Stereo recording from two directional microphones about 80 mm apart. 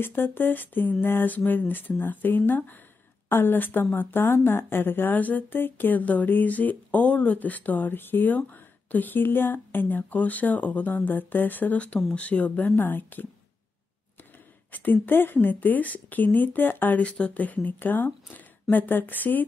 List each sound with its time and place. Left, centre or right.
0.0 s a woman's voice: left
14.7 s a woman's voice: left